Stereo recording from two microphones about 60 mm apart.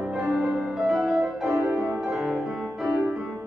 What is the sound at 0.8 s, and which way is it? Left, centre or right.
Music, centre.